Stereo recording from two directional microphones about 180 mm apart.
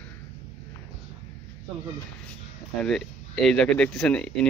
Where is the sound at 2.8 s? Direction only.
Centre (ahead or behind).